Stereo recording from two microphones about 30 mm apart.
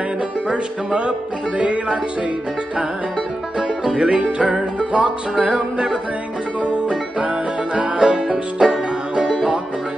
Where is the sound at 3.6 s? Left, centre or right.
Right.